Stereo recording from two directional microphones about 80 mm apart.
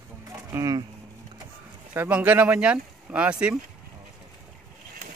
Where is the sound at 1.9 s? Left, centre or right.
Right.